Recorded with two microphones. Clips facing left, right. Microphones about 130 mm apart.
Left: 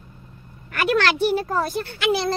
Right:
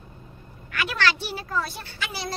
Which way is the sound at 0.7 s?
50° left (ahead or behind).